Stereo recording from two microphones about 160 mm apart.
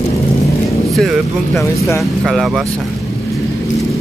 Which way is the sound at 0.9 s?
Centre (ahead or behind).